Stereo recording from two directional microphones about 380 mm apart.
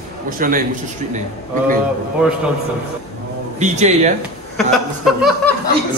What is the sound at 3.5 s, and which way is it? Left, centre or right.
Speech, centre.